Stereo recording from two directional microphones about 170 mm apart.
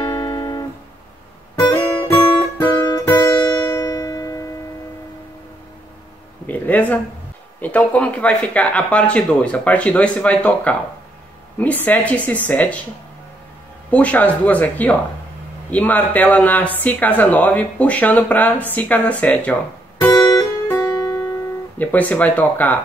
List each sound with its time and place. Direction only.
0.1 s music: 30° left (ahead or behind)
1.7 s music: 20° left (ahead or behind)
6.4 s a sound: 10° left (ahead or behind)
7.6 s speech: 10° left (ahead or behind)
13.8 s speech: 10° left (ahead or behind)
20.0 s music: 15° left (ahead or behind)
21.7 s speech: 10° left (ahead or behind)